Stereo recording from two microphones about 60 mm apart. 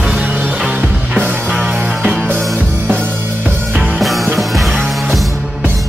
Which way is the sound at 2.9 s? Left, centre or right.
Right.